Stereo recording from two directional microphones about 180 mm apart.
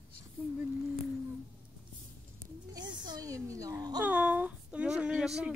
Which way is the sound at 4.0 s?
10° right (ahead or behind).